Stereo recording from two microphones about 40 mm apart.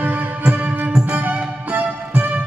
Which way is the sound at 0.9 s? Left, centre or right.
Right.